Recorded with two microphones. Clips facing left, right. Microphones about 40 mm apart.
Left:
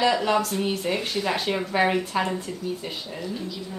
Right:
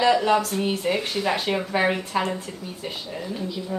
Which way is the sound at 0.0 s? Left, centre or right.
Centre.